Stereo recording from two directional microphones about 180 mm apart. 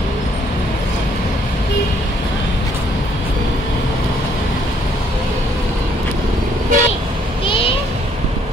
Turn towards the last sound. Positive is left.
turn(degrees=30)  # may be behind; listen again after turning